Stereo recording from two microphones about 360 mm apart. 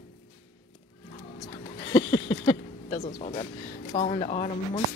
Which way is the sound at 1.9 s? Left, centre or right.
Centre.